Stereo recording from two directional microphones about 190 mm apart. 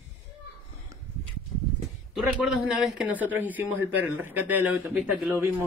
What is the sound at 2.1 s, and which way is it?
Speech, centre (ahead or behind).